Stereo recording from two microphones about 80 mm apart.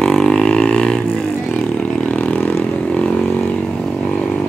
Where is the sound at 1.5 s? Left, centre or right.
Centre.